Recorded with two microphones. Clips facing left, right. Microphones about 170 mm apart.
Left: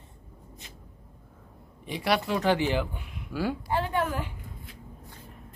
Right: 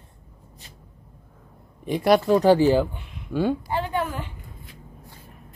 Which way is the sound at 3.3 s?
20° right (ahead or behind).